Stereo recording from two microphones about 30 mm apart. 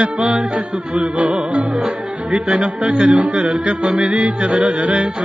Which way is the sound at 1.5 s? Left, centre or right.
Right.